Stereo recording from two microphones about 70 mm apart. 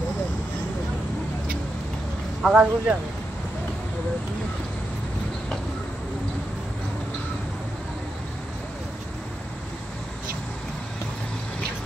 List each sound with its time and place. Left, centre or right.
2.5 s speech: right